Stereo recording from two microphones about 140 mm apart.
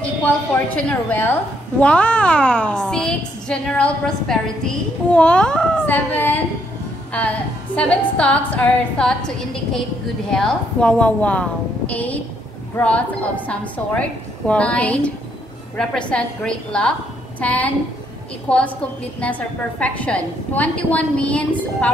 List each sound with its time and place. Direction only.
0.2 s a woman's voice: 10° left (ahead or behind)